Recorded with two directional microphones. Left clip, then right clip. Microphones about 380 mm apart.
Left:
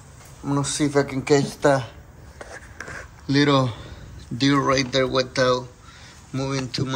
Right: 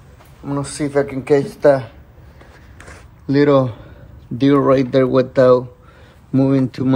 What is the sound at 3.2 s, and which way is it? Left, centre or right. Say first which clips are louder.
Speech: right 6 dB; centre.